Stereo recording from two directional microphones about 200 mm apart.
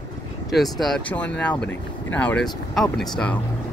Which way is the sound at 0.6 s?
Centre (ahead or behind).